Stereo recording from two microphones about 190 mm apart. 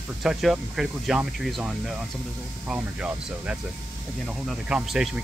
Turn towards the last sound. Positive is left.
turn(degrees=0)  # may be behind; listen again after turning